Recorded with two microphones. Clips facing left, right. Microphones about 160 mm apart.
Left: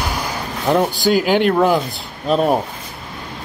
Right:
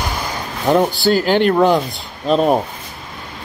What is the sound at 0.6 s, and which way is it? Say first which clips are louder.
Speech: right 2 dB; centre (ahead or behind).